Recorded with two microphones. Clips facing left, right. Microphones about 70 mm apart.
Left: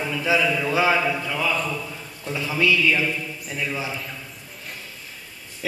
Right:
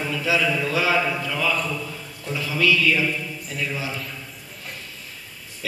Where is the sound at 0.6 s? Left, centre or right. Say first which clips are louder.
Left 2 dB; left.